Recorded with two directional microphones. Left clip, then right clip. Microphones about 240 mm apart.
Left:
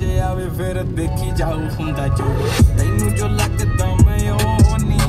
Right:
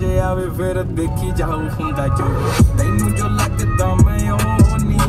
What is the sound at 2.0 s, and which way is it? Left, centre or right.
Music, centre.